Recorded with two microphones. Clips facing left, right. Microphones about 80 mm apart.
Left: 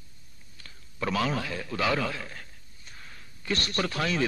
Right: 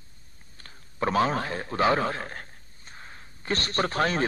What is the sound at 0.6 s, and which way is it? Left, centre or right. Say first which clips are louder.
A man's voice: right 5 dB; right.